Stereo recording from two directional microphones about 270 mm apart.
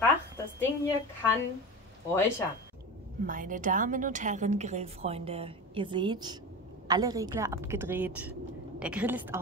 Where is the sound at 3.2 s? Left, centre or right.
Right.